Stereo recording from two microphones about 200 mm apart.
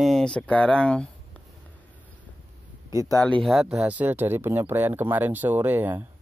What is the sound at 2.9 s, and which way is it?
Speech, 20° left (ahead or behind).